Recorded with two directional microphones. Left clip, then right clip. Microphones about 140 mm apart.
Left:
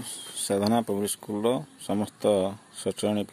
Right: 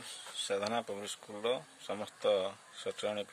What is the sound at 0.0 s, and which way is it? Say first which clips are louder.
Speech: left 4 dB; 55° left (ahead or behind).